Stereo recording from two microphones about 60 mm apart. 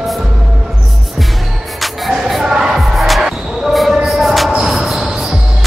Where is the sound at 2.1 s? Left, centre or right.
Centre.